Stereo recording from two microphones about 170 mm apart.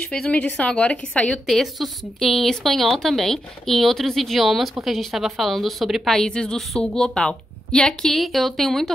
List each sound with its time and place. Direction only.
0.1 s a woman's voice: 5° left (ahead or behind)